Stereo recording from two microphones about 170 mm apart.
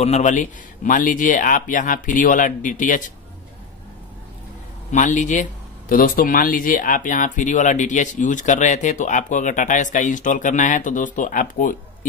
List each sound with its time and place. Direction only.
0.0 s speech: 45° left (ahead or behind)
4.9 s speech: 50° left (ahead or behind)